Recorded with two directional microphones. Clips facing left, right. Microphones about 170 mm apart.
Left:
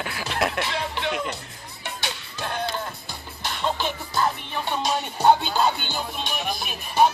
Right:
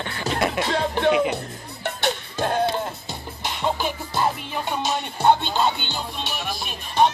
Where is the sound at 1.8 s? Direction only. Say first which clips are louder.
Right 8 dB; 55° right (ahead or behind).